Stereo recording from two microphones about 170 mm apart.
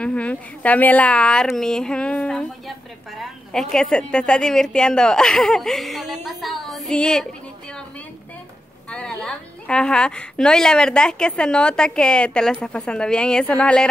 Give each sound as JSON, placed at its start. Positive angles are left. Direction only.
{"t": 0.0, "sound": "a woman's voice", "side_deg": 5}
{"t": 3.7, "sound": "a woman's voice", "side_deg": 5}
{"t": 8.9, "sound": "a woman's voice", "side_deg": 5}